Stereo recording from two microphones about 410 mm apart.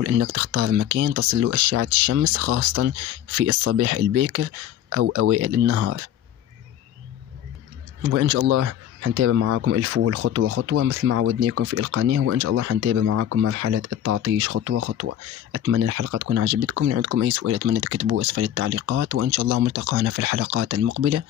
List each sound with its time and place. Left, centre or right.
0.0 s speech: right
8.1 s speech: right